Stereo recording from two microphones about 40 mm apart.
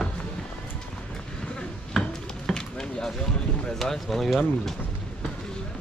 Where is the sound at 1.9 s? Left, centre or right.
Centre.